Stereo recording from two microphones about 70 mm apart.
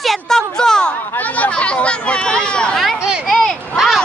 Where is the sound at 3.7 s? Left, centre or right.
Centre.